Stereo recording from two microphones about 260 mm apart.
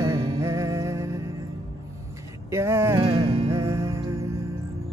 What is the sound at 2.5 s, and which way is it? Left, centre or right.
Music, centre.